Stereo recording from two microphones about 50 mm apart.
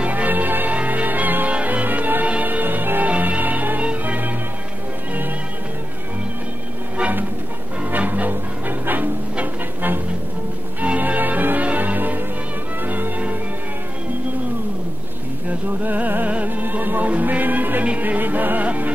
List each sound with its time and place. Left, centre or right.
0.0 s music: right
7.0 s music: right
15.8 s music: right